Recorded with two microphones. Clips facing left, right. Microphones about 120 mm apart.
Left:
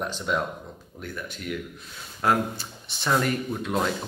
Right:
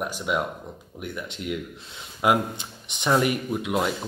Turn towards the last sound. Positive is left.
turn(degrees=-10)  # may be behind; listen again after turning